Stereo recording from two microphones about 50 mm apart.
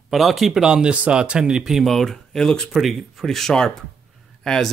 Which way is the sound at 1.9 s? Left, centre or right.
Centre.